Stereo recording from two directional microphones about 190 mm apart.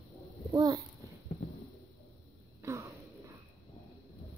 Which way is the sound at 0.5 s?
20° right (ahead or behind).